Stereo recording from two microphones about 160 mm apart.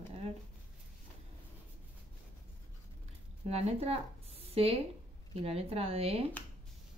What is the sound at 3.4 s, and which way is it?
Speech, 40° right (ahead or behind).